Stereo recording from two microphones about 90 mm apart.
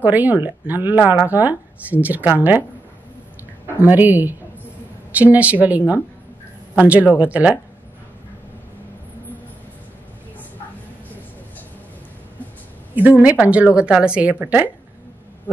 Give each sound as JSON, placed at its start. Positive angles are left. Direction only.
{"t": 0.0, "sound": "speech", "side_deg": -20}
{"t": 3.8, "sound": "a woman's voice", "side_deg": -20}
{"t": 12.9, "sound": "a woman's voice", "side_deg": -20}
{"t": 15.5, "sound": "a sound", "side_deg": 20}